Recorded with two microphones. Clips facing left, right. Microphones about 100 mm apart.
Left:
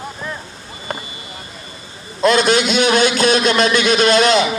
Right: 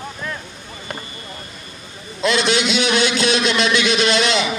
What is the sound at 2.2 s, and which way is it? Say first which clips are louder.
A man's voice: left 4 dB; 45° left (ahead or behind).